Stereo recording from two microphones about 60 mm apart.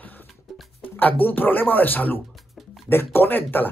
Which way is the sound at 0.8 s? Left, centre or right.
Left.